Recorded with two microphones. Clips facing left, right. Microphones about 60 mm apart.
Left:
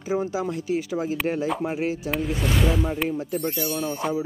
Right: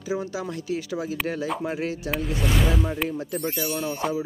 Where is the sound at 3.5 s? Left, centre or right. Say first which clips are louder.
Left 1 dB; right.